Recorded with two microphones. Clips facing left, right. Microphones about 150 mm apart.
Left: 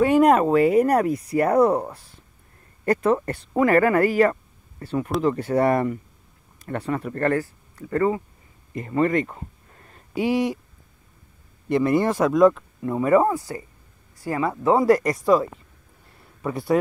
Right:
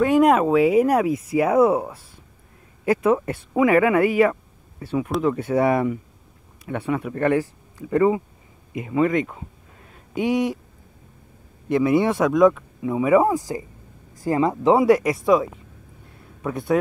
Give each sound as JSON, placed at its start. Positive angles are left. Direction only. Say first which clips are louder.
{"t": 0.0, "sound": "speech", "louder": "even", "side_deg": 0}
{"t": 8.7, "sound": "speech", "louder": "right 1 dB", "side_deg": -5}
{"t": 11.7, "sound": "speech", "louder": "right 1 dB", "side_deg": 0}
{"t": 13.3, "sound": "speech", "louder": "right 3 dB", "side_deg": -15}
{"t": 14.8, "sound": "speech", "louder": "right 1 dB", "side_deg": 0}